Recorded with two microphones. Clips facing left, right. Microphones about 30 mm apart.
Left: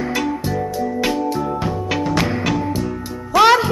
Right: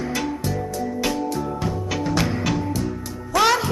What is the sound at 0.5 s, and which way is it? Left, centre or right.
Music, centre.